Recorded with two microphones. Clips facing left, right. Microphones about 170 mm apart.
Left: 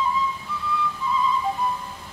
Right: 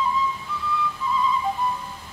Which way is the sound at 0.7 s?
Centre (ahead or behind).